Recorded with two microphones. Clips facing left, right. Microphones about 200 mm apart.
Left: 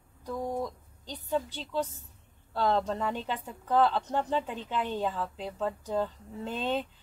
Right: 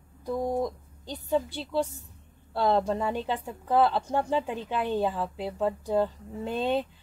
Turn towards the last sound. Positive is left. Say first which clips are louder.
# right 4 dB
turn(degrees=-15)  # may be behind; listen again after turning